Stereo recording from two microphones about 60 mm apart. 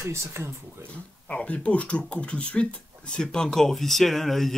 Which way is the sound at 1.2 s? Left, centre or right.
Centre.